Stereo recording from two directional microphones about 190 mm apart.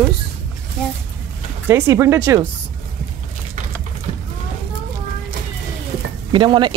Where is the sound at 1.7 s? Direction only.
15° right (ahead or behind).